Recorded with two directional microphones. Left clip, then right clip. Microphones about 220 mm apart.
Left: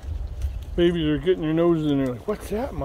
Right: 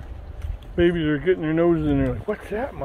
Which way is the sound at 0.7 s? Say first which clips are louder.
Right 1 dB; 15° left (ahead or behind).